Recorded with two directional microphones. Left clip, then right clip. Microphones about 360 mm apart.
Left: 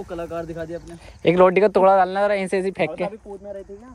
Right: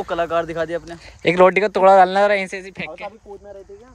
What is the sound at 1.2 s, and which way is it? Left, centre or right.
Speech, centre.